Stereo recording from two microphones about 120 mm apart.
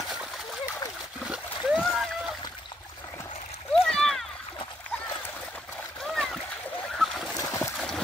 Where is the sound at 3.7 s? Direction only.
5° left (ahead or behind).